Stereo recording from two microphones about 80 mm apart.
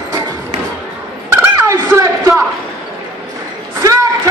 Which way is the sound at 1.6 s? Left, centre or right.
Right.